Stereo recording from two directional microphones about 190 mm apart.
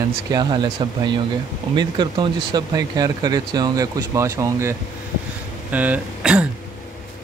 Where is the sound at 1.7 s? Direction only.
25° right (ahead or behind).